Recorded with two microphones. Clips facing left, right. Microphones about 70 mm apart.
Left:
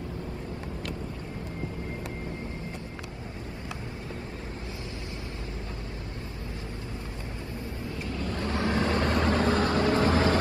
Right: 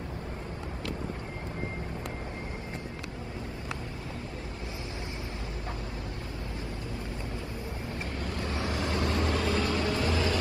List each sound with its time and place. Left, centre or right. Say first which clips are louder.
8.3 s vehicle: left 6 dB; left